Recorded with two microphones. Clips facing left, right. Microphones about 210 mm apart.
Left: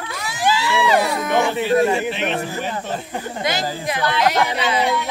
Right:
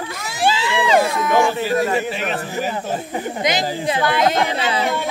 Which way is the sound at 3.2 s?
20° right (ahead or behind).